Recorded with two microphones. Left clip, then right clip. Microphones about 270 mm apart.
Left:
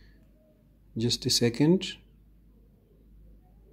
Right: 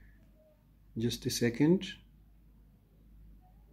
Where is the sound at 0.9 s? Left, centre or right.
Centre.